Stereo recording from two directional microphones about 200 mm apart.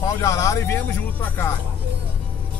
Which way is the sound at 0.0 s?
15° left (ahead or behind).